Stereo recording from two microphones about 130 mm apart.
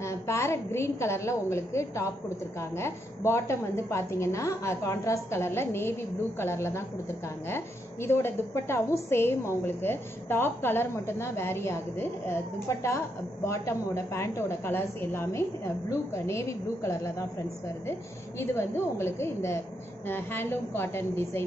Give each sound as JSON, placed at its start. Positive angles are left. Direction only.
{"t": 0.0, "sound": "a woman's voice", "side_deg": 20}
{"t": 18.4, "sound": "a woman's voice", "side_deg": 20}